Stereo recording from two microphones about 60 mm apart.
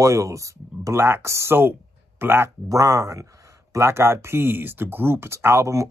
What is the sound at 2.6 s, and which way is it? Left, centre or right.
Speech, right.